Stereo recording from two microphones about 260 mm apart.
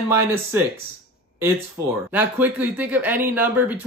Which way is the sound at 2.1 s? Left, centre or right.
Centre.